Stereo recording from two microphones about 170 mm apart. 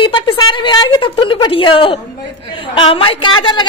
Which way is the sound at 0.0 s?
30° left (ahead or behind).